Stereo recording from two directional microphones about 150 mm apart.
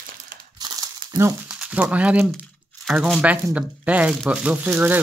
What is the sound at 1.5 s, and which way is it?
Speech, 5° right (ahead or behind).